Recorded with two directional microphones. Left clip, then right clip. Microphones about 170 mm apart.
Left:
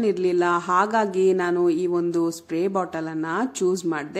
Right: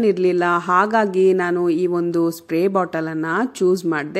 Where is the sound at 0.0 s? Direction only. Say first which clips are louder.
Right 4 dB; 25° right (ahead or behind).